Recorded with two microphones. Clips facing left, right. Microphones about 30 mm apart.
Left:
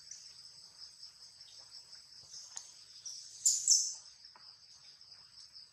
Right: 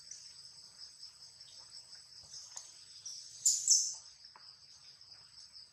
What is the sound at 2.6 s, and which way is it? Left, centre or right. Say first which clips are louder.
Bird: even; centre.